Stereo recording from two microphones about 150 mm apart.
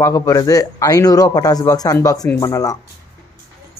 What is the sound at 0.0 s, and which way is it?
Speech, 20° left (ahead or behind).